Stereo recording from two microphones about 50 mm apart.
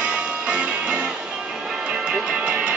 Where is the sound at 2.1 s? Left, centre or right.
Right.